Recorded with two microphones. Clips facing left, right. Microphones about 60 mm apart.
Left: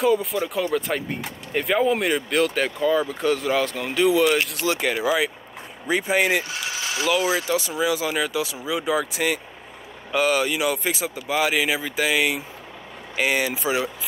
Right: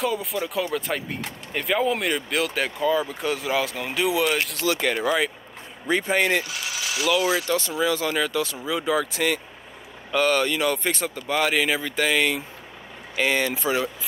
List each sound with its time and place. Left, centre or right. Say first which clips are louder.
0.0 s speech: left 5 dB; centre
6.4 s vehicle: left 1 dB; left
7.1 s speech: even; left
7.4 s speech: left 1 dB; centre